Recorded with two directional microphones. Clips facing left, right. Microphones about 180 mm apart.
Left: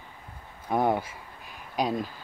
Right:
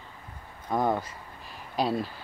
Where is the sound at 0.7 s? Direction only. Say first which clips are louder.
Left 2 dB; 10° left (ahead or behind).